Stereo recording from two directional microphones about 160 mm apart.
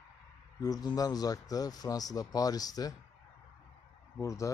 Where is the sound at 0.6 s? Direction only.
25° left (ahead or behind).